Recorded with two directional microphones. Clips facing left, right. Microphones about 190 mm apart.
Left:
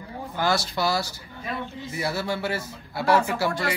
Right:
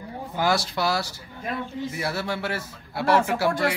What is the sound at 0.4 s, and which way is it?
Speech, 5° right (ahead or behind).